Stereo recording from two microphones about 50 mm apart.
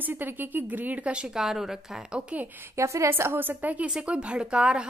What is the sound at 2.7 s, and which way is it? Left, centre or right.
Speech, right.